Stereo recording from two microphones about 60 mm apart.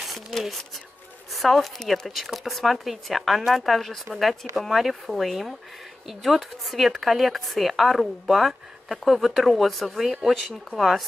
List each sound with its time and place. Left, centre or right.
0.0 s speech: centre